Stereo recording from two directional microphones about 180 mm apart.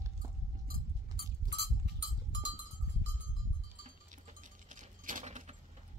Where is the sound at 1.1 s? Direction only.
70° right (ahead or behind).